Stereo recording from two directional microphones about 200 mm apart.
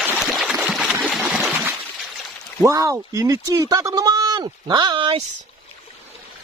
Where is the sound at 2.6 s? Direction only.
15° right (ahead or behind).